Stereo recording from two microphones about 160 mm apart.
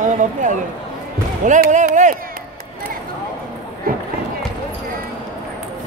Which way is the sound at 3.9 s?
65° right (ahead or behind).